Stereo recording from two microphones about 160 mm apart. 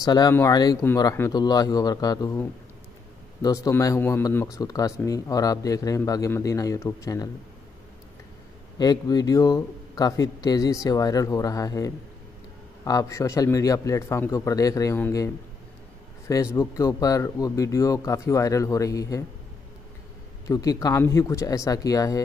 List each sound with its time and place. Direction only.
0.0 s a man's voice: 25° left (ahead or behind)
3.4 s a man's voice: 20° left (ahead or behind)
8.7 s a man's voice: 25° left (ahead or behind)
20.4 s a man's voice: 20° left (ahead or behind)